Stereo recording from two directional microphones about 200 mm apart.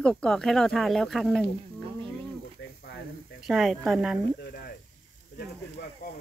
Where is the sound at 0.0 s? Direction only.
5° left (ahead or behind).